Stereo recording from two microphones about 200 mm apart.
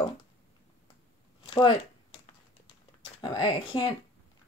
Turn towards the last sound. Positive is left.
turn(degrees=25)  # may be behind; listen again after turning